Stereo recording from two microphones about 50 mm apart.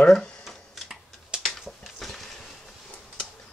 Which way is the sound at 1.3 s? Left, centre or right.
Centre.